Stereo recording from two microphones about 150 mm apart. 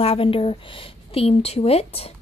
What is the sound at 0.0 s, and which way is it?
A woman's voice, 40° left (ahead or behind).